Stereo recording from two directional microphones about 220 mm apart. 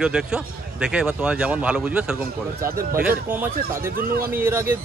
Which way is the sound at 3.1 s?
10° right (ahead or behind).